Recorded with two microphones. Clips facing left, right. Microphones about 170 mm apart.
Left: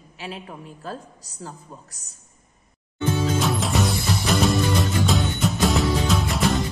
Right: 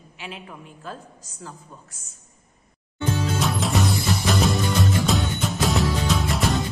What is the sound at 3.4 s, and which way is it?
Music, centre (ahead or behind).